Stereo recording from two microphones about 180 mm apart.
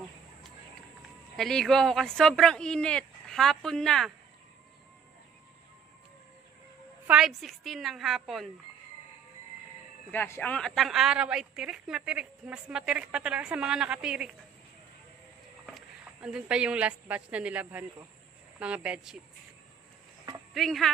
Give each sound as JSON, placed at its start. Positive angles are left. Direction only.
{"t": 1.3, "sound": "a woman's voice", "side_deg": 0}
{"t": 7.1, "sound": "a woman's voice", "side_deg": 0}
{"t": 10.1, "sound": "a woman's voice", "side_deg": 10}
{"t": 15.6, "sound": "a woman's voice", "side_deg": 0}
{"t": 20.5, "sound": "a woman's voice", "side_deg": 0}